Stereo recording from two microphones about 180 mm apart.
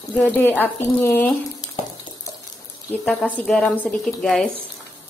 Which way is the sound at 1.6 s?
20° left (ahead or behind).